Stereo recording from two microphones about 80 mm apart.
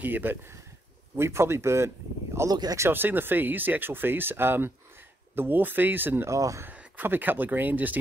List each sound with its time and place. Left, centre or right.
0.0 s speech: right
6.3 s speech: right
6.6 s speech: right